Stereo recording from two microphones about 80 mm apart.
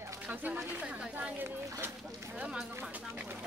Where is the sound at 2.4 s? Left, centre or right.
Centre.